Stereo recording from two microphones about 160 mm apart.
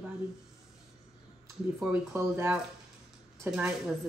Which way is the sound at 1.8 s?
10° right (ahead or behind).